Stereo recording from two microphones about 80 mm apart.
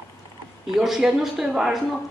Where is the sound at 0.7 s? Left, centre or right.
Centre.